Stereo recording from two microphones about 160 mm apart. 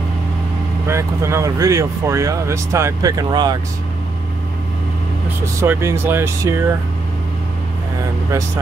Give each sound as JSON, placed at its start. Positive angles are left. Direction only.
{"t": 0.8, "sound": "speech", "side_deg": -15}
{"t": 5.4, "sound": "speech", "side_deg": -15}